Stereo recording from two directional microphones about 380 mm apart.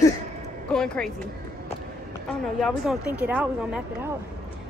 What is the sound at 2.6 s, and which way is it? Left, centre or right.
A woman's voice, centre.